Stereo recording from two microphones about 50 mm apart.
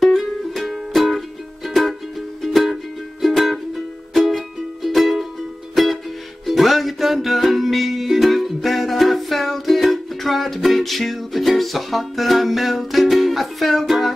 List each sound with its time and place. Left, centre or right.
0.0 s music: centre